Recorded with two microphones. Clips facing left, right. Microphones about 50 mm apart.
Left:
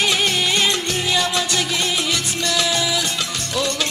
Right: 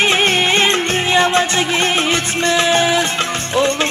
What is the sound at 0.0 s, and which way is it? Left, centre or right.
Music, right.